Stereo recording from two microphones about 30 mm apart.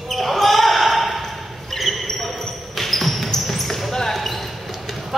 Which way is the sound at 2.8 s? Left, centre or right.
Centre.